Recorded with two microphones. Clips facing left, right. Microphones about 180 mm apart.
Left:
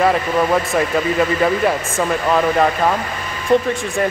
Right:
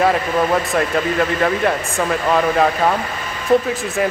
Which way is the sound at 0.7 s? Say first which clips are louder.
Left 1 dB; 5° left (ahead or behind).